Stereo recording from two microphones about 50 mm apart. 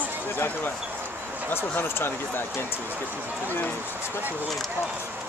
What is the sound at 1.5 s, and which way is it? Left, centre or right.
Speech, left.